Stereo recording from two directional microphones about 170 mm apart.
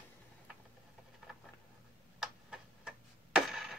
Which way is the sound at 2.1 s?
5° right (ahead or behind).